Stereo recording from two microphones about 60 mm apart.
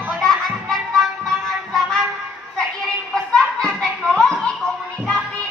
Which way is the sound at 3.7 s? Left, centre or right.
Centre.